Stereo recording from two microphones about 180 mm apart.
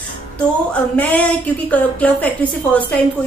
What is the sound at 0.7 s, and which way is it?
A woman's voice, 10° left (ahead or behind).